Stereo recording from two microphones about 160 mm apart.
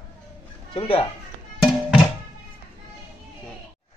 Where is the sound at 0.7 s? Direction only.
35° left (ahead or behind).